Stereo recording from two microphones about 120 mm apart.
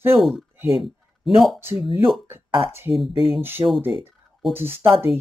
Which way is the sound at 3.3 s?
20° right (ahead or behind).